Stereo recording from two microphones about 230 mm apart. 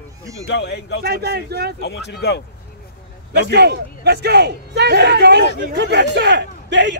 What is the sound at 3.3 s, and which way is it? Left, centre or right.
A man's voice, right.